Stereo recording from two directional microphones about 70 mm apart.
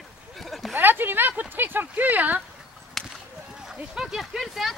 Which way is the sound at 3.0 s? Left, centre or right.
Centre.